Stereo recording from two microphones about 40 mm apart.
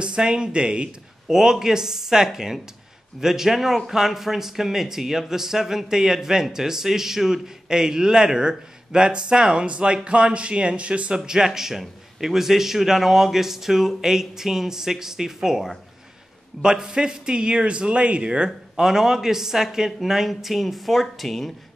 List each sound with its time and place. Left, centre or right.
0.0 s a man's voice: right
1.2 s a man's voice: centre; by 11.1 s right
11.1 s a man's voice: centre
18.8 s a man's voice: centre